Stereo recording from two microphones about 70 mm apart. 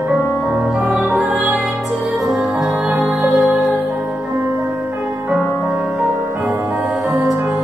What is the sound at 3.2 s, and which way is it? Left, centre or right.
Music, centre.